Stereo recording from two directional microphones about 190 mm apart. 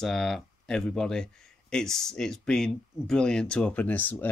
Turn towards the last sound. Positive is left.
turn(degrees=10)  # may be behind; listen again after turning